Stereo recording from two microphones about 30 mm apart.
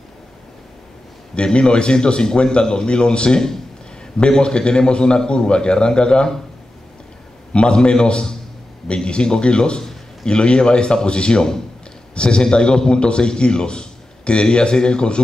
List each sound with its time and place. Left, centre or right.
1.3 s a man's voice: left
4.4 s a man's voice: left
7.5 s a man's voice: left